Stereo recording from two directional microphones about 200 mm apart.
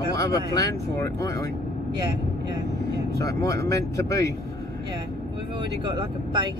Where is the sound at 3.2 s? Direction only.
15° left (ahead or behind).